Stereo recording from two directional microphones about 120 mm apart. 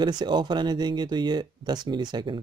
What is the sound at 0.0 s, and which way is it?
Speech, 40° right (ahead or behind).